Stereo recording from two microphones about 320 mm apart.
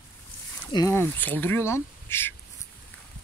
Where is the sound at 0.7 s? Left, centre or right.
Centre.